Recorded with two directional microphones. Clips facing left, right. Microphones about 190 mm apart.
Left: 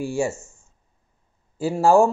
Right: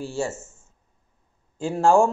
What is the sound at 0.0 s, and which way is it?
Speech, 10° left (ahead or behind).